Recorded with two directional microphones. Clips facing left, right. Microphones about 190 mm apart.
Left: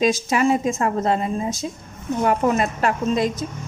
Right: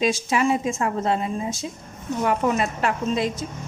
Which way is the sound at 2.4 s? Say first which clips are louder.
Left 3 dB; 45° left (ahead or behind).